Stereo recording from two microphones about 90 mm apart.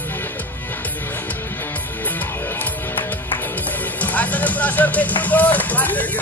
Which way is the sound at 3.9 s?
15° left (ahead or behind).